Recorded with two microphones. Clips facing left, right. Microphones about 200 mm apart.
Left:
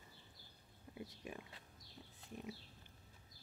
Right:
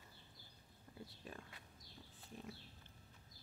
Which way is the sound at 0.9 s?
10° left (ahead or behind).